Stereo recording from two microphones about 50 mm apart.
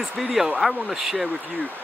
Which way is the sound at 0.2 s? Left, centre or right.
Centre.